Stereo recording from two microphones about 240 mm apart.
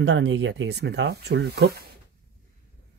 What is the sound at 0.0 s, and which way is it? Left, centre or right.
Speech, right.